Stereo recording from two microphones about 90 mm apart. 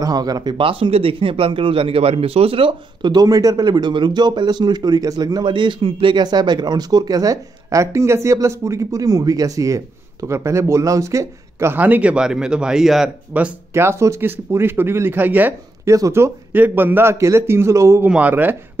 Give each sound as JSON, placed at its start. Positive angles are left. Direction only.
{"t": 0.0, "sound": "speech", "side_deg": -45}
{"t": 0.7, "sound": "a man's voice", "side_deg": -90}
{"t": 3.1, "sound": "speech", "side_deg": -45}
{"t": 5.4, "sound": "a man's voice", "side_deg": -60}
{"t": 6.1, "sound": "speech", "side_deg": -55}
{"t": 11.7, "sound": "a man's voice", "side_deg": -20}
{"t": 13.3, "sound": "a man's voice", "side_deg": -15}
{"t": 13.7, "sound": "a man's voice", "side_deg": -30}
{"t": 15.8, "sound": "a man's voice", "side_deg": -35}
{"t": 18.0, "sound": "a man's voice", "side_deg": -15}